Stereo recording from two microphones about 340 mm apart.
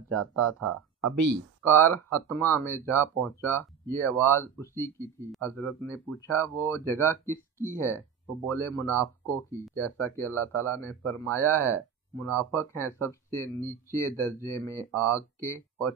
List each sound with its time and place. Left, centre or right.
0.2 s speech: right
1.7 s speech: centre